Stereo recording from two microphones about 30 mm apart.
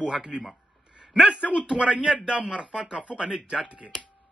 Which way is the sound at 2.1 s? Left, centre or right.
Right.